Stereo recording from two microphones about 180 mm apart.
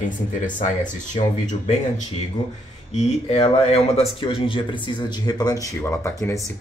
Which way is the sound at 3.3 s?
35° left (ahead or behind).